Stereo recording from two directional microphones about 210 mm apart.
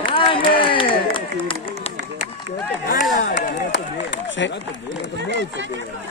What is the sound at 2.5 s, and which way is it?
Speech, 40° left (ahead or behind).